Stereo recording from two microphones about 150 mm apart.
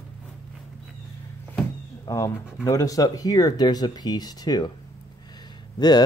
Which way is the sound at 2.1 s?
20° left (ahead or behind).